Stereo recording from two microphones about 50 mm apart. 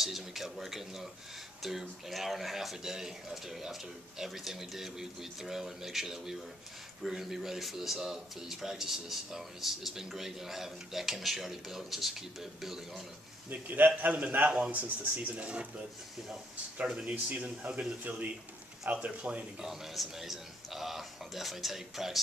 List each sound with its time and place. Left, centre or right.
0.0 s speech: centre
13.5 s a man's voice: right
16.8 s speech: centre
17.1 s speech: right
19.0 s speech: right
19.6 s speech: centre